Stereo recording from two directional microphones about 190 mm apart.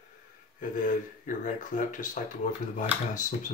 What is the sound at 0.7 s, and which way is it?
Speech, 45° left (ahead or behind).